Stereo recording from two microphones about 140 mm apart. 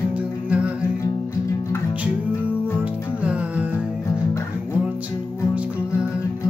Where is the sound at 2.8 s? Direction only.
10° right (ahead or behind).